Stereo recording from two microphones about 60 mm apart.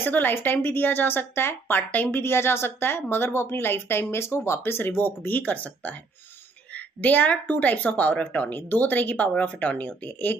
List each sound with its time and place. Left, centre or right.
0.0 s a woman's voice: left
1.8 s a woman's voice: left